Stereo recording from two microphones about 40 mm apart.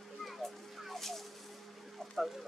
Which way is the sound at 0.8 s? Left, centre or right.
Centre.